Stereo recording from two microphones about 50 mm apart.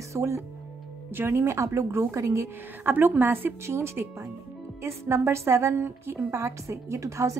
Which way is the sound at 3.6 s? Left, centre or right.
Right.